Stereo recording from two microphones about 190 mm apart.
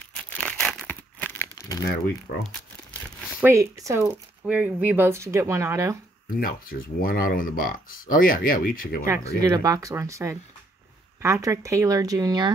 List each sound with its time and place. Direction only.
0.1 s crumpling: 5° left (ahead or behind)
3.3 s speech: 15° right (ahead or behind)
6.3 s speech: 50° left (ahead or behind)
9.0 s speech: 15° right (ahead or behind)